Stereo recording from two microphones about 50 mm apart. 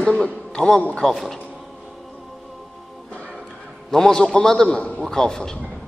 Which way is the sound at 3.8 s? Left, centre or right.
Centre.